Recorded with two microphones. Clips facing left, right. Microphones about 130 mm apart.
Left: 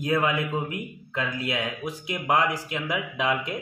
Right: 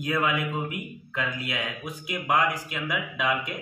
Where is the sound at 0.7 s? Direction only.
30° left (ahead or behind).